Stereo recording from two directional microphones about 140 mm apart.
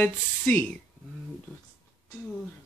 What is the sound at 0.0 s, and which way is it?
Speech, 10° left (ahead or behind).